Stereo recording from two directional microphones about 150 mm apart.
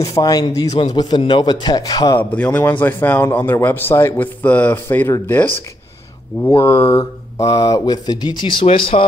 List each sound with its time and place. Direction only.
0.0 s speech: 25° left (ahead or behind)
2.1 s a man's voice: 10° left (ahead or behind)
6.7 s speech: 40° left (ahead or behind)
7.0 s speech: 25° left (ahead or behind)